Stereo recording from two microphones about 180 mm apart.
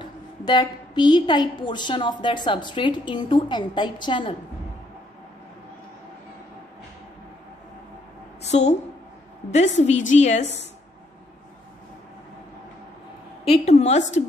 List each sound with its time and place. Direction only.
0.0 s a woman's voice: 25° left (ahead or behind)
8.4 s a sound: 40° left (ahead or behind)
9.5 s a woman's voice: 40° left (ahead or behind)
13.5 s a woman's voice: 35° left (ahead or behind)